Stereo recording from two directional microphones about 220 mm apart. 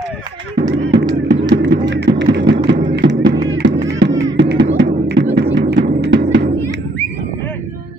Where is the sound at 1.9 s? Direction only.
55° right (ahead or behind).